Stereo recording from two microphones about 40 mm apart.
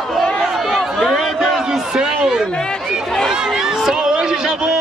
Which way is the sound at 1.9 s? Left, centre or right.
Centre.